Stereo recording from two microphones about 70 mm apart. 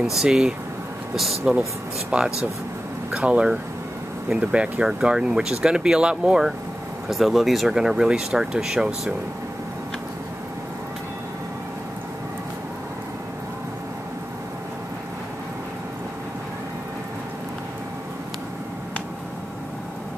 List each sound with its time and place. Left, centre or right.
0.0 s speech: centre
2.0 s speech: centre
7.1 s speech: centre